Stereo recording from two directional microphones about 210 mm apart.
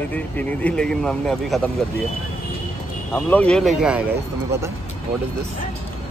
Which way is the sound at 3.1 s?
10° left (ahead or behind).